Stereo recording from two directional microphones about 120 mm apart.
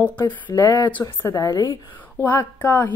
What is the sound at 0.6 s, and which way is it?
Speech, 35° left (ahead or behind).